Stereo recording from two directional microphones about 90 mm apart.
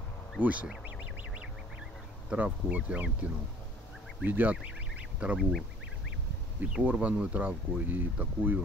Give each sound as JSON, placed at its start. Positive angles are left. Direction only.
{"t": 0.4, "sound": "speech", "side_deg": -15}
{"t": 2.2, "sound": "speech", "side_deg": -15}
{"t": 6.6, "sound": "speech", "side_deg": -15}